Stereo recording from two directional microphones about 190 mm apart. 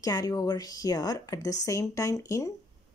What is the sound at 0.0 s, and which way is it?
Speech, 20° left (ahead or behind).